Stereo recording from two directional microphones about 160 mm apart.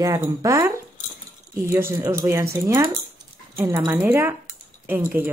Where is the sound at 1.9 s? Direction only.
15° right (ahead or behind).